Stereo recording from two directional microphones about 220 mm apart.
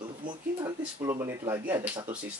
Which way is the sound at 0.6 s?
10° right (ahead or behind).